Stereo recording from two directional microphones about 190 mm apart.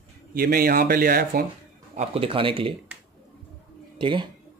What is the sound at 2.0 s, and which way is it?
Speech, 30° right (ahead or behind).